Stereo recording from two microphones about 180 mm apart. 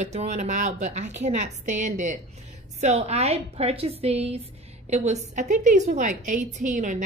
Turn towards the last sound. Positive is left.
turn(degrees=-45)  # may be behind; listen again after turning